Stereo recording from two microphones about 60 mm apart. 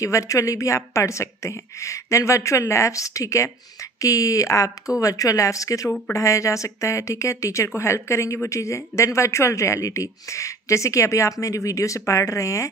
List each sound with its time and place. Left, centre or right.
0.0 s speech: left
4.0 s speech: left
5.9 s speech: left
6.1 s speech: left